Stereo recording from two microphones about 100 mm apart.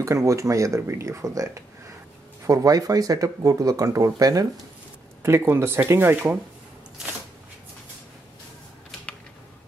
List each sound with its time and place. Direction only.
0.0 s speech: 30° right (ahead or behind)
5.2 s speech: 25° right (ahead or behind)